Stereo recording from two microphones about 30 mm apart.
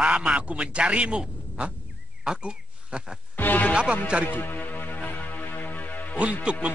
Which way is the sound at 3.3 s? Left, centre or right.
Left.